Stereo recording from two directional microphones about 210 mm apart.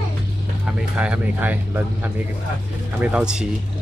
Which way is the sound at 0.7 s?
5° right (ahead or behind).